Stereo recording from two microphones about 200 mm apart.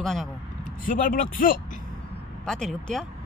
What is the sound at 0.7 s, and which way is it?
Speech, 45° left (ahead or behind).